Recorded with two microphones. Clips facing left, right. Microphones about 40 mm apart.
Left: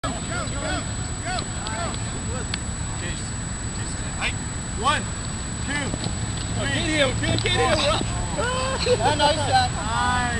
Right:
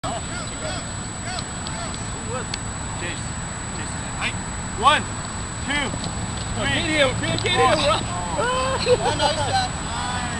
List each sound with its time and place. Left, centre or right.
6.6 s speech: right
7.2 s speech: centre
9.0 s speech: centre